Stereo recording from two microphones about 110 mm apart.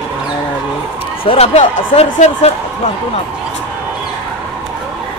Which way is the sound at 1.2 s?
65° left (ahead or behind).